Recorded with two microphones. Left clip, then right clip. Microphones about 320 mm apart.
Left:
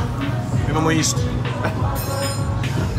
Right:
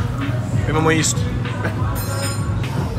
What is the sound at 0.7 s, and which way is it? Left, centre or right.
Speech, centre.